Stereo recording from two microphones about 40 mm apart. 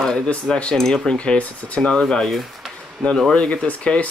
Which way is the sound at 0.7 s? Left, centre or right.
Centre.